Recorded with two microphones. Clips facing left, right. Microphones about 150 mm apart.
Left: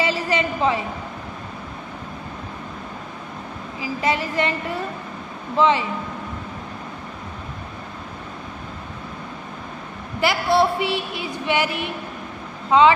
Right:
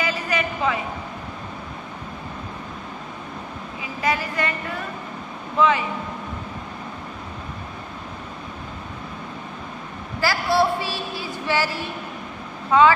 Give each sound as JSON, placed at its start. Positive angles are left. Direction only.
{"t": 0.0, "sound": "a sound", "side_deg": 25}
{"t": 3.8, "sound": "a woman's voice", "side_deg": 25}
{"t": 10.2, "sound": "a woman's voice", "side_deg": 20}